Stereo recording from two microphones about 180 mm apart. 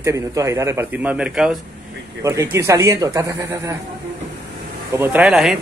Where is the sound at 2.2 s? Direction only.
15° right (ahead or behind).